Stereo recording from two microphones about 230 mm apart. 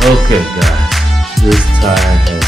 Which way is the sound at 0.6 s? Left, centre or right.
Centre.